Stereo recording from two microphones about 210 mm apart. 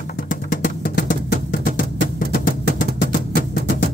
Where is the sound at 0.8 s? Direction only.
45° left (ahead or behind).